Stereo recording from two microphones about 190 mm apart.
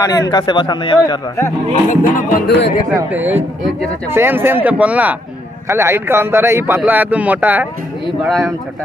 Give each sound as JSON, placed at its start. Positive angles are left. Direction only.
{"t": 0.0, "sound": "a man's voice", "side_deg": 20}
{"t": 1.9, "sound": "music", "side_deg": 45}
{"t": 2.4, "sound": "speech", "side_deg": 65}
{"t": 2.9, "sound": "a man's voice", "side_deg": -10}